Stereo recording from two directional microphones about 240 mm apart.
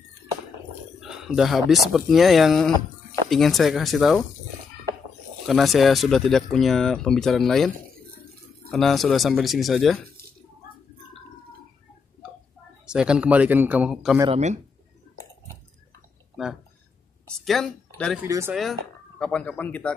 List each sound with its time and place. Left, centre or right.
1.0 s speech: centre
5.5 s speech: centre
12.8 s speech: centre
14.2 s speech: right
16.4 s speech: centre
18.2 s speech: centre
18.6 s speech: centre